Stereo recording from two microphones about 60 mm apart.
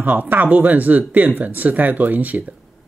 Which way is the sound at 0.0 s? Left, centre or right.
Right.